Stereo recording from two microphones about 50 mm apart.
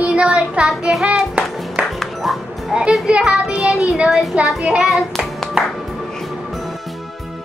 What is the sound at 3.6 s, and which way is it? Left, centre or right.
Music, centre.